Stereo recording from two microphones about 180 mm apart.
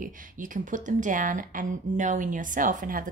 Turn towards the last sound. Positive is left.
turn(degrees=-50)  # may be behind; listen again after turning